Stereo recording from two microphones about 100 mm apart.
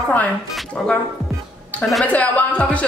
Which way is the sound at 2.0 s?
15° left (ahead or behind).